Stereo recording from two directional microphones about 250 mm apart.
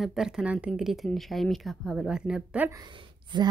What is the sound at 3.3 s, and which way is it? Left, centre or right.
Speech, centre.